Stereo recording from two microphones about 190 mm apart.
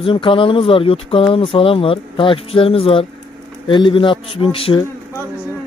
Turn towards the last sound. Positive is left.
turn(degrees=30)  # may be behind; listen again after turning